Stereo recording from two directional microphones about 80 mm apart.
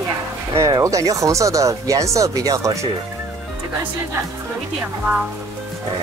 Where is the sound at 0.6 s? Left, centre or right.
Right.